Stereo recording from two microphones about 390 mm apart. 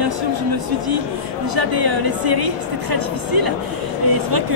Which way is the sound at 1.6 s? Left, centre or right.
Right.